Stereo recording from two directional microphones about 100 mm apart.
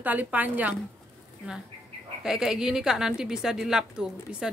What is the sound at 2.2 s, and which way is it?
A woman's voice, 5° right (ahead or behind).